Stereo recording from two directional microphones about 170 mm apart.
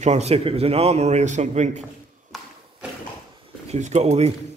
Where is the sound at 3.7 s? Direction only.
40° right (ahead or behind).